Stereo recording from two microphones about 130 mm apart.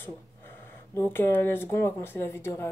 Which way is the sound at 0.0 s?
15° left (ahead or behind).